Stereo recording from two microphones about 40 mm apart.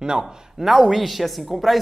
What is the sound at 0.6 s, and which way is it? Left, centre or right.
Speech, centre.